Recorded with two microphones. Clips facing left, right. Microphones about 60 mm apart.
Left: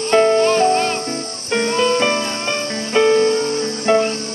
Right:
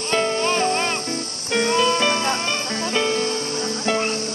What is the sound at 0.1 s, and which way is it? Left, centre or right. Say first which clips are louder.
Music: left 8 dB; centre.